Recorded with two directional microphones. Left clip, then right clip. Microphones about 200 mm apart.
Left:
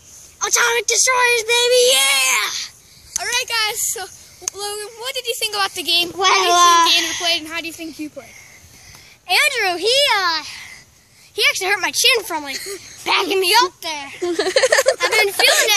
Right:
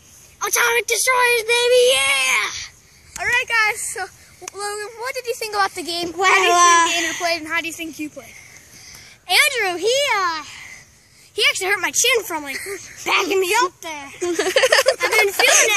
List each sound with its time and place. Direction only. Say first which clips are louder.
0.4 s speech: left 1 dB; centre (ahead or behind)
3.2 s speech: right 2 dB; 25° right (ahead or behind)
4.6 s a child's voice: right 3 dB; 30° right (ahead or behind)
6.1 s speech: right 2 dB; 5° left (ahead or behind)
7.3 s speech: right 1 dB; 15° right (ahead or behind)
9.3 s a child's voice: left 1 dB; centre (ahead or behind)